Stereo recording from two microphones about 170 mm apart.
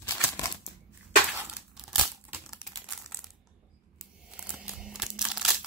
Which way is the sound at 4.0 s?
5° right (ahead or behind).